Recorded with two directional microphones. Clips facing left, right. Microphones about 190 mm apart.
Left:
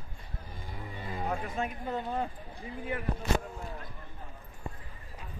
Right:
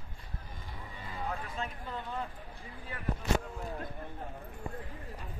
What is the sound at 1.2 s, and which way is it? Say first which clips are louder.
Speech: left 4 dB; 45° left (ahead or behind).